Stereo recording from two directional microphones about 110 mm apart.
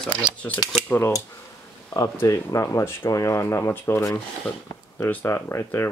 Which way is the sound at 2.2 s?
30° left (ahead or behind).